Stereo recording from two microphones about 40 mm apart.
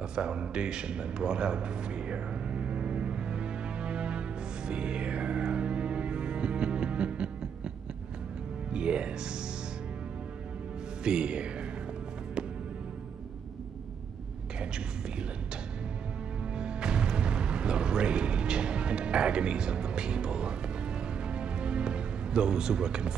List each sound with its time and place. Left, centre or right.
0.1 s a sound: right
4.6 s music: right
8.7 s speech: right
11.1 s music: right
16.5 s music: right